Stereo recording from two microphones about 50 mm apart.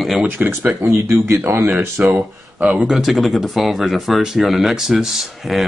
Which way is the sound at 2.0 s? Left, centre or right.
Right.